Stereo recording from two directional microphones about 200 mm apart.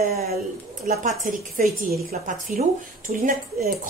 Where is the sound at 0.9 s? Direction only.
40° right (ahead or behind).